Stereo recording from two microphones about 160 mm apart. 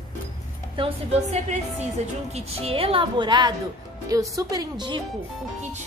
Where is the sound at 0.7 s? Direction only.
40° right (ahead or behind).